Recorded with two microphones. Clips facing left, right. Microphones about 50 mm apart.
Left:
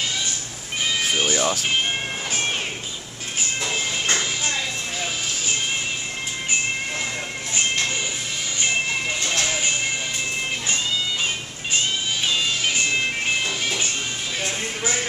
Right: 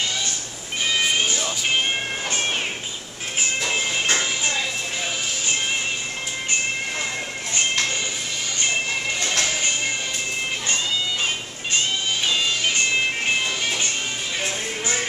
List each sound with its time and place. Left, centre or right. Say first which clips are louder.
1.3 s music: left 4 dB; left
3.7 s music: right 1 dB; centre